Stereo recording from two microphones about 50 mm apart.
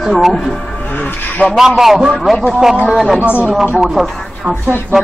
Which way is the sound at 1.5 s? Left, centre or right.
Centre.